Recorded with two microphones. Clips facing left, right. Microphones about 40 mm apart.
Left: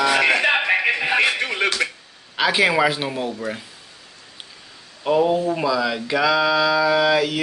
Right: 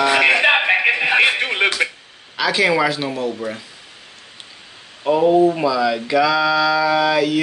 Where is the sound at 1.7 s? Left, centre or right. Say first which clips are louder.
Right 3 dB; centre.